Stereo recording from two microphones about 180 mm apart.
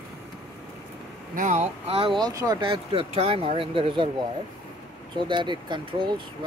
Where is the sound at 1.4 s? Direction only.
45° right (ahead or behind).